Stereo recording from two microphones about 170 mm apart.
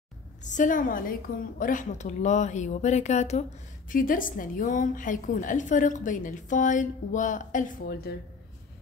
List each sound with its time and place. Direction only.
0.4 s a woman's voice: 45° left (ahead or behind)
3.9 s a woman's voice: 55° left (ahead or behind)
8.1 s speech: 70° left (ahead or behind)